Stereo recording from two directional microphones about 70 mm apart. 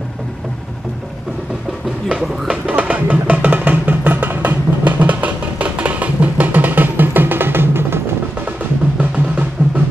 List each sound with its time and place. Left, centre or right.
2.0 s music: centre; by 8.0 s right
9.6 s music: centre